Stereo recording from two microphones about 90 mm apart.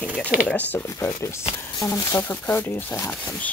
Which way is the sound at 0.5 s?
20° left (ahead or behind).